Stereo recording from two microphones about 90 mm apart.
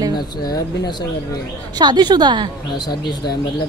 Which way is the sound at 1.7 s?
55° right (ahead or behind).